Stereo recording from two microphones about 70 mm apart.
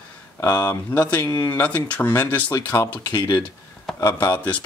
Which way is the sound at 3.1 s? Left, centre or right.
Left.